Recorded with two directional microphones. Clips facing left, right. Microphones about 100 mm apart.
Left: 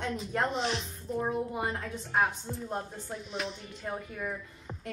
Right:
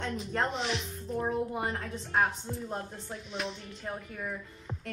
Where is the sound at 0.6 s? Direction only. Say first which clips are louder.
Left 2 dB; 30° left (ahead or behind).